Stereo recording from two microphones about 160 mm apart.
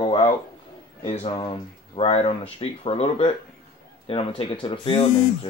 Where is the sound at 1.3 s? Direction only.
30° left (ahead or behind).